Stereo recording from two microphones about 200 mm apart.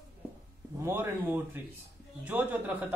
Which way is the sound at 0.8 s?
10° right (ahead or behind).